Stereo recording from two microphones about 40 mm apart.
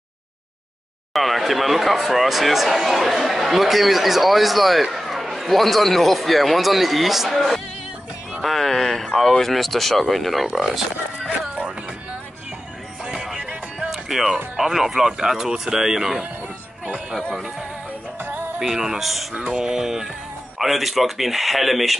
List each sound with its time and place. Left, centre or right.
1.1 s speech: centre
11.2 s speech: right
13.1 s music: centre
14.6 s speech: centre
18.6 s speech: centre